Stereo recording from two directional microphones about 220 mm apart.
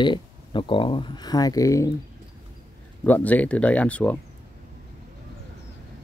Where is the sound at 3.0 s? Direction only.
5° left (ahead or behind).